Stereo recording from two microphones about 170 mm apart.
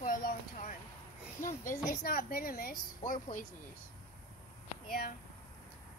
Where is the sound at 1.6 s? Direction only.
55° left (ahead or behind).